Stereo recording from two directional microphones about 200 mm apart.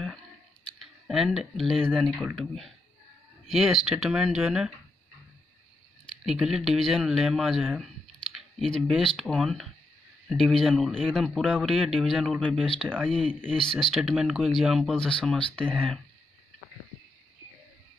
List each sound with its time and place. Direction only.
0.7 s a man's voice: centre (ahead or behind)
6.2 s a man's voice: centre (ahead or behind)